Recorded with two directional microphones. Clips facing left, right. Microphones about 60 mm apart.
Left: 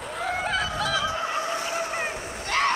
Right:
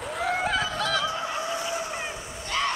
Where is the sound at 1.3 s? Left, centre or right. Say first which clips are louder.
Left 2 dB; left.